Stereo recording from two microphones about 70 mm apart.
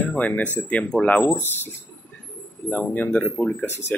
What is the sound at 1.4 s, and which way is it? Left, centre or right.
Speech, left.